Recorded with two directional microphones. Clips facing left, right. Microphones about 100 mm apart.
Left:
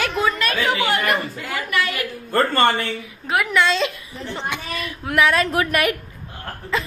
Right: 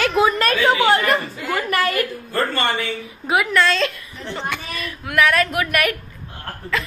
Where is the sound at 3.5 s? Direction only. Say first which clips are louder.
Right 1 dB; 15° left (ahead or behind).